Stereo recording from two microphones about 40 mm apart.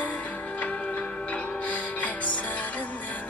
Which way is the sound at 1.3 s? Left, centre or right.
Left.